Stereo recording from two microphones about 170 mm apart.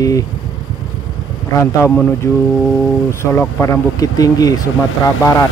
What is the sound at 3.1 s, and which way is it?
Speech, 15° left (ahead or behind).